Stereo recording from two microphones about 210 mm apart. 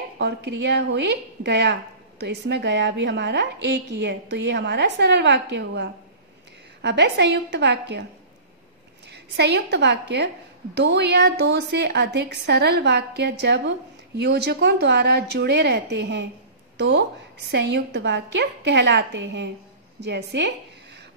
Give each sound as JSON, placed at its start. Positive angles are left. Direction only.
{"t": 0.2, "sound": "a woman's voice", "side_deg": -55}
{"t": 9.1, "sound": "a woman's voice", "side_deg": -55}